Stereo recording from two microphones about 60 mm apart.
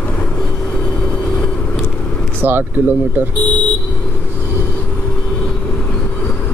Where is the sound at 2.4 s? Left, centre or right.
Right.